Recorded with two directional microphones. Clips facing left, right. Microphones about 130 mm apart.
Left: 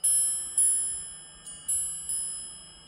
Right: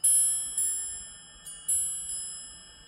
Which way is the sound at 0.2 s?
35° left (ahead or behind).